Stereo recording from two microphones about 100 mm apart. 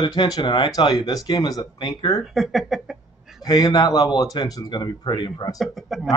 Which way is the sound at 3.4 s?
40° left (ahead or behind).